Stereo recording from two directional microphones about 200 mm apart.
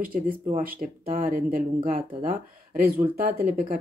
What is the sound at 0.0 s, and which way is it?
Speech, 45° right (ahead or behind).